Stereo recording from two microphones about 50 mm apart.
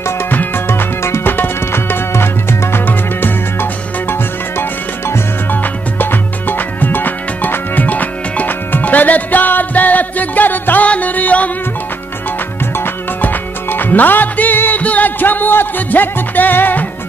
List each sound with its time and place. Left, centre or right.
0.7 s music: left
2.9 s music: left
12.7 s music: left